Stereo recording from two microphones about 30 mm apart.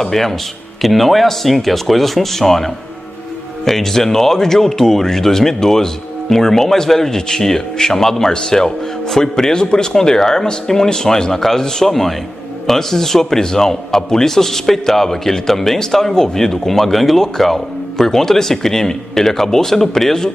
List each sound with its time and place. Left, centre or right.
0.0 s a man's voice: centre
8.3 s a man's voice: left
11.9 s a man's voice: centre